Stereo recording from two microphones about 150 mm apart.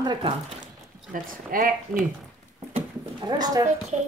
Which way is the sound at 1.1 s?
65° right (ahead or behind).